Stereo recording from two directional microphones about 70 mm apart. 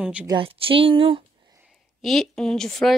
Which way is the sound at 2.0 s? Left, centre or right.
Centre.